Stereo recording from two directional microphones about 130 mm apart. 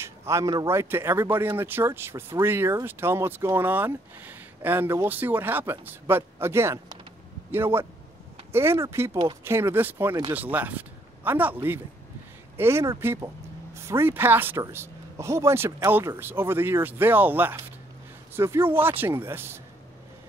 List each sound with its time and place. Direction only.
0.0 s speech: 20° right (ahead or behind)